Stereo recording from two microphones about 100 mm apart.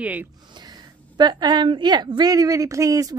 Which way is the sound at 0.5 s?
45° right (ahead or behind).